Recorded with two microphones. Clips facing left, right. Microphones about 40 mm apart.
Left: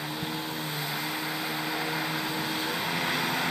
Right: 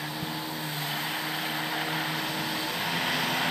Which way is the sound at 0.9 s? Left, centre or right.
Right.